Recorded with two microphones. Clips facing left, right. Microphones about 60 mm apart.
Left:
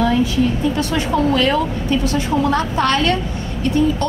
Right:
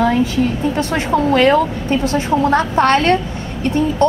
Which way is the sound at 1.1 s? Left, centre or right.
Right.